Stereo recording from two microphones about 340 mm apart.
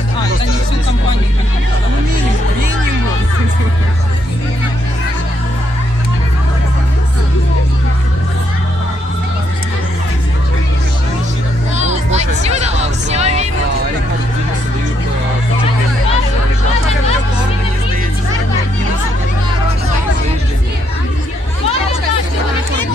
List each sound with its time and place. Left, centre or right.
11.7 s music: centre